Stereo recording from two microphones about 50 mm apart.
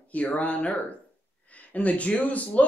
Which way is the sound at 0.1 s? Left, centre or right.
Left.